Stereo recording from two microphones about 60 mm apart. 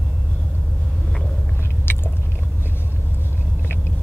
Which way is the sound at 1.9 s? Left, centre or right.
Left.